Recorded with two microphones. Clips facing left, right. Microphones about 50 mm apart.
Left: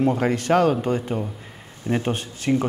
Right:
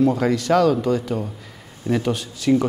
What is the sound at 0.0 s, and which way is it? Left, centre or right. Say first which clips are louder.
Speech: right 2 dB; left.